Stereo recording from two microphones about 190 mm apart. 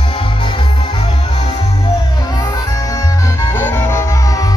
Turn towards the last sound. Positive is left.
turn(degrees=15)  # may be behind; listen again after turning